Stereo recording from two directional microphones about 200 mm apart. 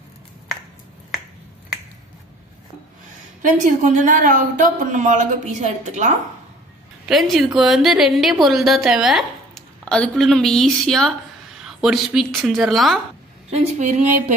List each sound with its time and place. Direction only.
3.4 s a woman's voice: 40° right (ahead or behind)
7.1 s a woman's voice: centre (ahead or behind)
13.5 s a woman's voice: 35° right (ahead or behind)